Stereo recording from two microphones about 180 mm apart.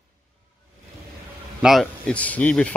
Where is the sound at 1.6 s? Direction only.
5° left (ahead or behind).